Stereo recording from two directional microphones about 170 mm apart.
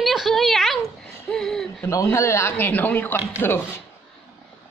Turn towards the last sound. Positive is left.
turn(degrees=15)  # may be behind; listen again after turning